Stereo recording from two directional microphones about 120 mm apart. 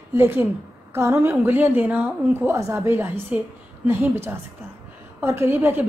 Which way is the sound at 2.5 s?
25° right (ahead or behind).